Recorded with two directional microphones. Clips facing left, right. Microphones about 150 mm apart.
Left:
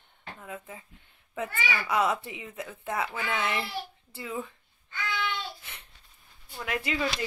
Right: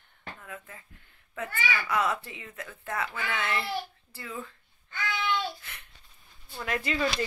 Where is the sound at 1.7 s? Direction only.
20° left (ahead or behind).